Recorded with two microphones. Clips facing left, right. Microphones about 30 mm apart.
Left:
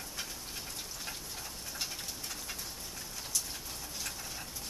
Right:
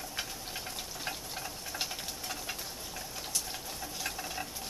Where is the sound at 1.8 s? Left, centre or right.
Right.